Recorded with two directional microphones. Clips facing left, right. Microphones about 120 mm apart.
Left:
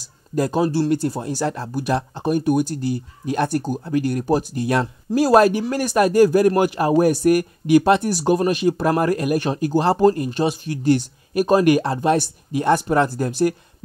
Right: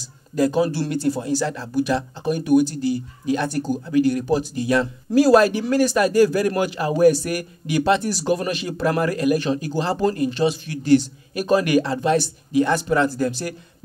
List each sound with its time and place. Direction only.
0.4 s speech: 40° left (ahead or behind)